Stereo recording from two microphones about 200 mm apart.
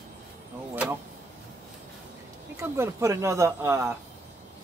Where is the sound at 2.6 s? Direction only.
15° right (ahead or behind).